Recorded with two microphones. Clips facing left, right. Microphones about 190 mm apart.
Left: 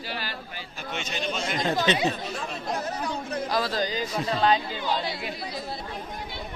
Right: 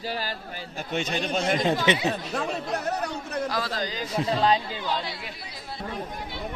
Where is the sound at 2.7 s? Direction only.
65° right (ahead or behind).